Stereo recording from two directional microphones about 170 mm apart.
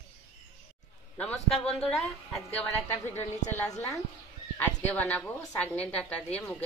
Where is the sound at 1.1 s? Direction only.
5° left (ahead or behind).